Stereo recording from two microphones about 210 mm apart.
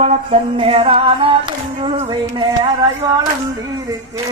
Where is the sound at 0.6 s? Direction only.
25° right (ahead or behind).